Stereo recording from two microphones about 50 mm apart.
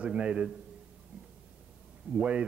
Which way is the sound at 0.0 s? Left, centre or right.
Right.